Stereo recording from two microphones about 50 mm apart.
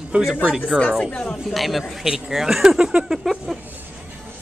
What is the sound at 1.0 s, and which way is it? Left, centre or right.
Speech, left.